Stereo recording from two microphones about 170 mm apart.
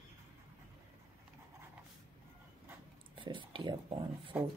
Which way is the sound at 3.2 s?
30° right (ahead or behind).